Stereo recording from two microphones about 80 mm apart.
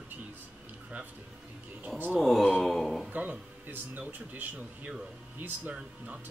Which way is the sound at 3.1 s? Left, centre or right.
Centre.